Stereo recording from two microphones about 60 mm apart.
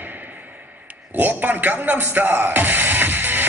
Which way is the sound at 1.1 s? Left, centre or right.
Right.